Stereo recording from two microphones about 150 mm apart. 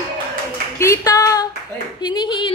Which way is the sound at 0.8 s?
20° left (ahead or behind).